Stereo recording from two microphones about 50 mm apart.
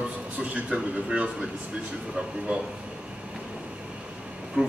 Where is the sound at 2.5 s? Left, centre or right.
Right.